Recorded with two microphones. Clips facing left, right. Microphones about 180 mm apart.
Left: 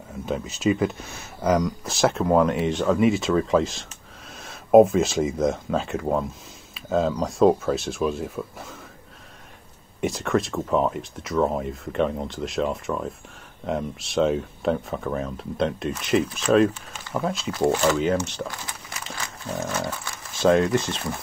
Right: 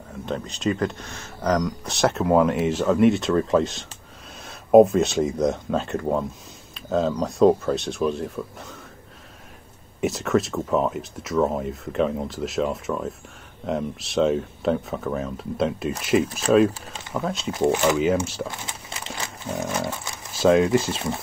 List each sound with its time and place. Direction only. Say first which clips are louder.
0.2 s speech: left 2 dB; 5° left (ahead or behind)
9.9 s speech: right 2 dB; centre (ahead or behind)
16.3 s speech: right 1 dB; 40° right (ahead or behind)
17.1 s speech: left 1 dB; centre (ahead or behind)
17.6 s speech: right 1 dB; 10° right (ahead or behind)
18.5 s a sound: right 1 dB; 25° right (ahead or behind)
20.3 s speech: right 2 dB; centre (ahead or behind)